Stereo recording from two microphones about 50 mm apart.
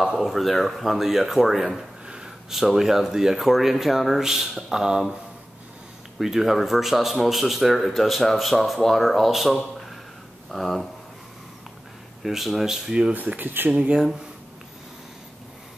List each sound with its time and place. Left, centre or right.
0.0 s speech: centre
2.0 s a sound: centre
2.5 s speech: centre
6.1 s speech: centre
12.2 s speech: centre
13.4 s speech: right
13.7 s speech: right